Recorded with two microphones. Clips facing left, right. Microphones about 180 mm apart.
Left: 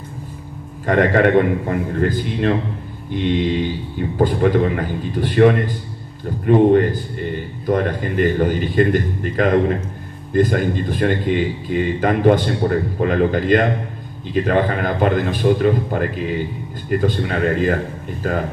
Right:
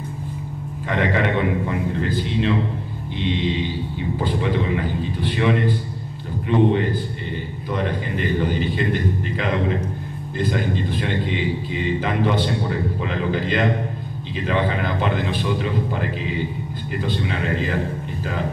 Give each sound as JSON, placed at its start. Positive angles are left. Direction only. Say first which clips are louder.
{"t": 0.8, "sound": "a man's voice", "louder": "left 7 dB", "side_deg": 50}